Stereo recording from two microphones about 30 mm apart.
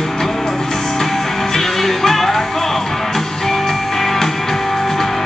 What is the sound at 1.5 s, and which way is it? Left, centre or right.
Music, centre.